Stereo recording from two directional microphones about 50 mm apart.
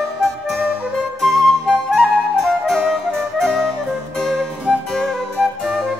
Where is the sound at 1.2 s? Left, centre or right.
Centre.